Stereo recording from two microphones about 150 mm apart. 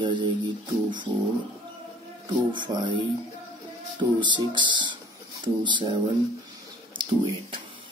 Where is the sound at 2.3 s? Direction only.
30° right (ahead or behind).